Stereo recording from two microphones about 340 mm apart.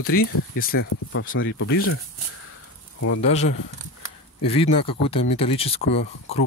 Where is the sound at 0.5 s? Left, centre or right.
Left.